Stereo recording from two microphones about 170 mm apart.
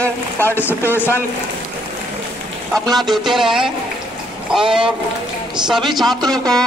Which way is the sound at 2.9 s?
Centre (ahead or behind).